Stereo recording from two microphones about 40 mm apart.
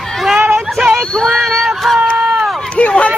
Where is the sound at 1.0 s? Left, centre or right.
Centre.